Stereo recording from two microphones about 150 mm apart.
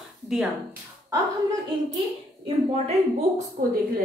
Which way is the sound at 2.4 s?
45° right (ahead or behind).